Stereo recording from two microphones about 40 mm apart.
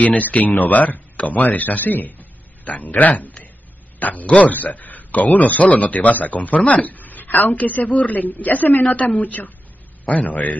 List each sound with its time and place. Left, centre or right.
0.0 s a man's voice: left
8.8 s speech: left